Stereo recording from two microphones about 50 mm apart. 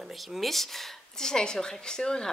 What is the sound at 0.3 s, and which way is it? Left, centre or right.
A woman's voice, centre.